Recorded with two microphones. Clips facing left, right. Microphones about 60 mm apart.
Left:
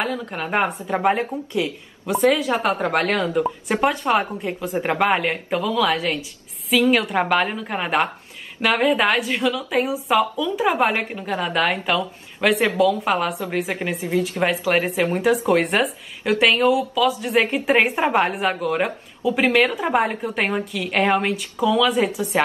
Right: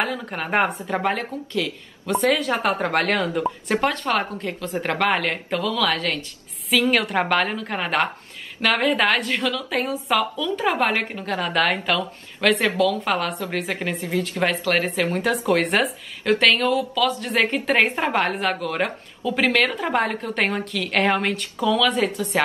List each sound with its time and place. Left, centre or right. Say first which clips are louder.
0.0 s a woman's voice: even; centre
1.0 s a woman's voice: left 4 dB; centre
2.0 s a woman's voice: left 2 dB; centre